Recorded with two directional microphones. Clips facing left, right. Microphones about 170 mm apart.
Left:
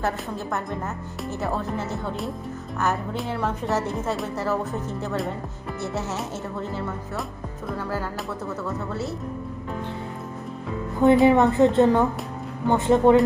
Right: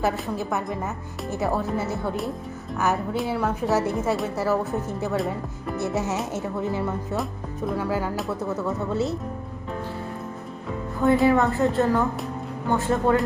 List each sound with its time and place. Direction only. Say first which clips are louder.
0.0 s a woman's voice: right 2 dB; 10° right (ahead or behind)
5.8 s a woman's voice: right 3 dB; 15° right (ahead or behind)
11.2 s a woman's voice: left 3 dB; 20° left (ahead or behind)